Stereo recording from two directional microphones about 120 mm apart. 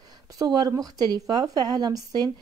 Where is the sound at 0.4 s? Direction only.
30° right (ahead or behind).